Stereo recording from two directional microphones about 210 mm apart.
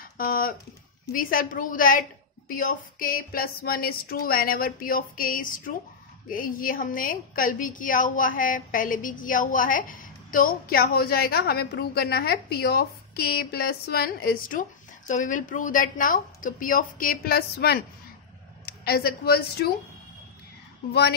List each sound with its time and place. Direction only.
0.2 s a woman's voice: 40° left (ahead or behind)